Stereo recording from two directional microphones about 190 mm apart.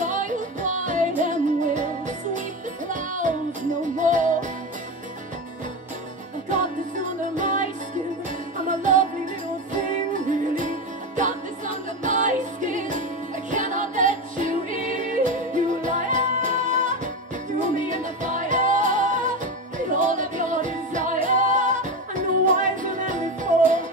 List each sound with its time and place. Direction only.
0.0 s music: 40° right (ahead or behind)
7.3 s music: 40° right (ahead or behind)
8.6 s music: 40° right (ahead or behind)